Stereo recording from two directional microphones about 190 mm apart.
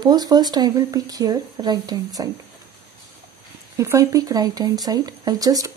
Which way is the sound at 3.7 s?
15° right (ahead or behind).